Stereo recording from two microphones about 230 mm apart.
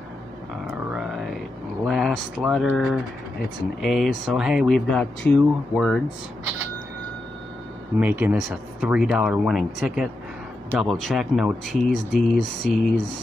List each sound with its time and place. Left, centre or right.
0.7 s a sound: centre
1.9 s speech: centre
8.0 s speech: centre
11.7 s speech: left
12.1 s speech: centre